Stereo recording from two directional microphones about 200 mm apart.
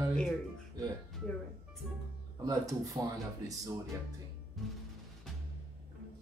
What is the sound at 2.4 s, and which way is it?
Speech, 15° right (ahead or behind).